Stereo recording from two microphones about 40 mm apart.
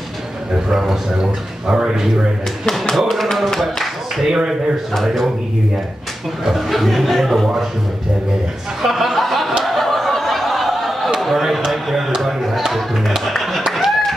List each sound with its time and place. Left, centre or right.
0.7 s a man's voice: centre
2.6 s speech: centre
3.5 s a sound: centre
4.3 s a man's voice: centre
4.9 s speech: centre
6.4 s speech: centre
8.8 s a sound: centre